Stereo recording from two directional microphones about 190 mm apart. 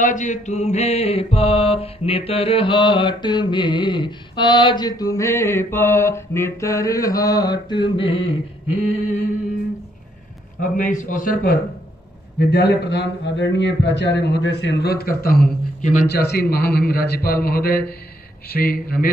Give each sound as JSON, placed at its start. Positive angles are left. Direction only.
{"t": 0.0, "sound": "mantra", "side_deg": 40}
{"t": 10.6, "sound": "a man's voice", "side_deg": 45}
{"t": 12.4, "sound": "a man's voice", "side_deg": 60}
{"t": 16.1, "sound": "a man's voice", "side_deg": 60}